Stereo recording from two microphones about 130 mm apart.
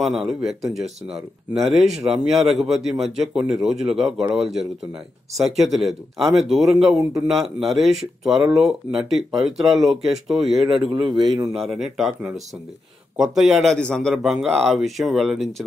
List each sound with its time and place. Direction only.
0.0 s speech: centre (ahead or behind)
10.7 s a man's voice: 40° right (ahead or behind)
11.5 s speech: centre (ahead or behind)